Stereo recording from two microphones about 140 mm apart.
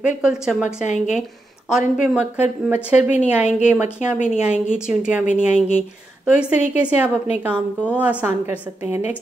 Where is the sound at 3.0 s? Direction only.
55° left (ahead or behind).